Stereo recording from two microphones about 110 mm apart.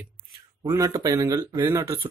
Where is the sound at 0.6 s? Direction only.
30° right (ahead or behind).